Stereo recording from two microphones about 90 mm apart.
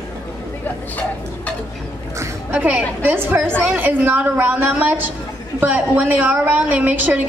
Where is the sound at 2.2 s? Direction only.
20° right (ahead or behind).